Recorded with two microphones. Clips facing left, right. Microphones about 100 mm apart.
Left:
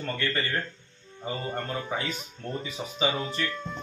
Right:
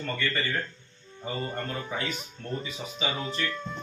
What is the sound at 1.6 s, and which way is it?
Speech, centre (ahead or behind).